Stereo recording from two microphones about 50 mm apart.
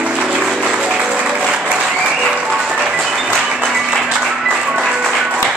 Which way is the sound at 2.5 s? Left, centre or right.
Centre.